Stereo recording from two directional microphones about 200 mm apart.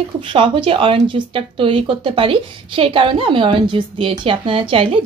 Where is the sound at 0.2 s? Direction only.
25° right (ahead or behind).